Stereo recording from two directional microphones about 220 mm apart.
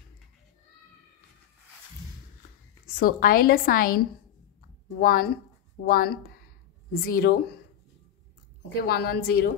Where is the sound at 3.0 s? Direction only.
40° left (ahead or behind).